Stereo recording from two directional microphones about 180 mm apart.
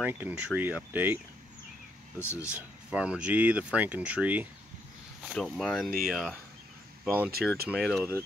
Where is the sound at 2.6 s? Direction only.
5° right (ahead or behind).